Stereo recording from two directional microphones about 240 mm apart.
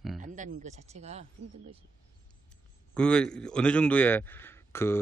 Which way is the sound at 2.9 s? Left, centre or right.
Centre.